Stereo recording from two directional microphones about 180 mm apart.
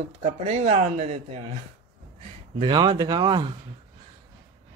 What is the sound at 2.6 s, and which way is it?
Speech, 25° right (ahead or behind).